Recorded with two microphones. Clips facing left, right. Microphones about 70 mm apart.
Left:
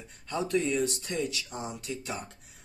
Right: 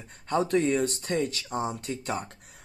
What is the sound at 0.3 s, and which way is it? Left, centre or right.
Speech, right.